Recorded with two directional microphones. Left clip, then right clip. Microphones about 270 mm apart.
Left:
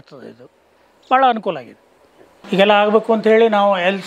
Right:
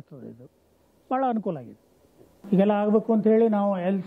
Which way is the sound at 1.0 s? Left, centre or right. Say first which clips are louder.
Left 12 dB; centre.